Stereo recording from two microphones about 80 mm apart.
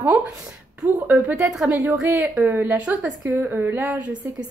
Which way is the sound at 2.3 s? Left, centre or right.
Right.